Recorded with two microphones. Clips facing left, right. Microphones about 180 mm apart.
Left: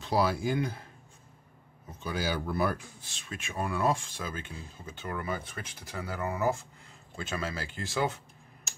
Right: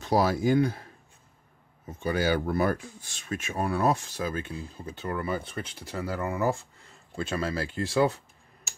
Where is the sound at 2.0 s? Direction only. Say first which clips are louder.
Right 6 dB; 55° right (ahead or behind).